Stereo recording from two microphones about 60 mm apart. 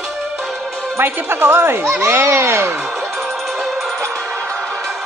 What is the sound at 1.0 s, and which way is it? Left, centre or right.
Speech, right.